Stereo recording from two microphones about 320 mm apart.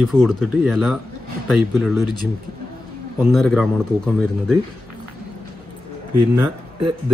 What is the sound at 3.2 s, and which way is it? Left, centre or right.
Speech, centre.